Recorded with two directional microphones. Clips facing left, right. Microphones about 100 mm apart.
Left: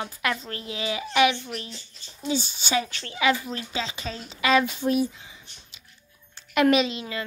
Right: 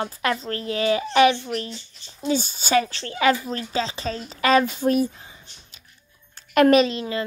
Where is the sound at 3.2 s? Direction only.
45° right (ahead or behind).